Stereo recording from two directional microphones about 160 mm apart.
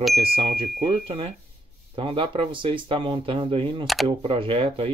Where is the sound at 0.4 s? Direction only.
40° right (ahead or behind).